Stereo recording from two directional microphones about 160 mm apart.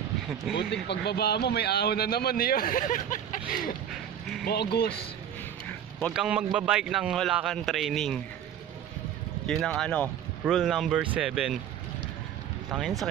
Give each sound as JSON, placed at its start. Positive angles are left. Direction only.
{"t": 0.6, "sound": "a man's voice", "side_deg": 90}
{"t": 3.9, "sound": "a sound", "side_deg": 0}
{"t": 4.5, "sound": "speech", "side_deg": 85}
{"t": 6.1, "sound": "a man's voice", "side_deg": -5}
{"t": 9.5, "sound": "a man's voice", "side_deg": 5}